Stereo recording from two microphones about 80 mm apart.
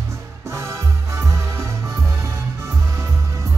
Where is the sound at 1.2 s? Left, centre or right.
Right.